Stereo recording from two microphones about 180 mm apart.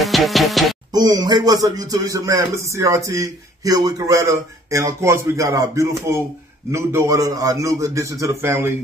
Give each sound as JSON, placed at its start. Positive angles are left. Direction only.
{"t": 0.0, "sound": "music", "side_deg": 0}
{"t": 0.9, "sound": "a man's voice", "side_deg": -20}